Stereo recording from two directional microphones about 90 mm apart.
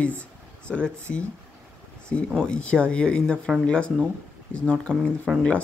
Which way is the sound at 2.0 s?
10° left (ahead or behind).